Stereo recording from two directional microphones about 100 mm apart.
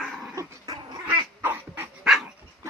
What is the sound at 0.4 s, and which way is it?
Dog, 30° right (ahead or behind).